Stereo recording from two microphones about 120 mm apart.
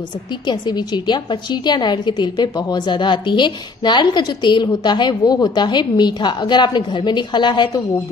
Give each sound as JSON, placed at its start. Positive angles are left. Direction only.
{"t": 0.5, "sound": "a woman's voice", "side_deg": 35}